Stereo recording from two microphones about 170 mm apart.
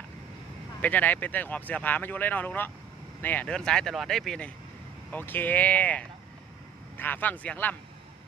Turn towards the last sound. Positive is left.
turn(degrees=10)  # may be behind; listen again after turning